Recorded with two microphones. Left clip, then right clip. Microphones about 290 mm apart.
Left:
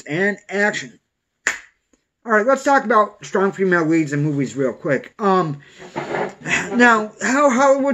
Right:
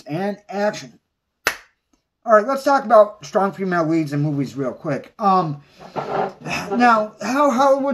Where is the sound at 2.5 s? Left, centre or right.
Centre.